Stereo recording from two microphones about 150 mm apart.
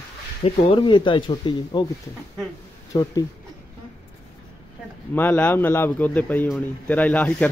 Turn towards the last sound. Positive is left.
turn(degrees=10)  # may be behind; listen again after turning